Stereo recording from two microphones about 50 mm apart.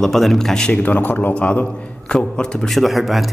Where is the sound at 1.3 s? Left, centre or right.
Left.